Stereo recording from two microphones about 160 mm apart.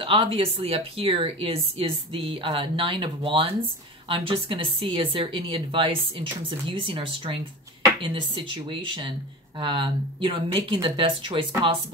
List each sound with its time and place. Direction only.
0.0 s speech: 35° right (ahead or behind)